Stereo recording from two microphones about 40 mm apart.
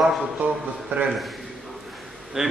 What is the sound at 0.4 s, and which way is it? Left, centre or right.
Speech, right.